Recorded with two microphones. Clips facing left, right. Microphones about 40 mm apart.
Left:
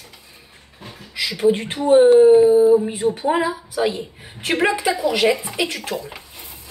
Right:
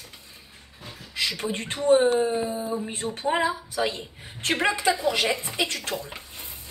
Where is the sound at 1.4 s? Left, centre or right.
Centre.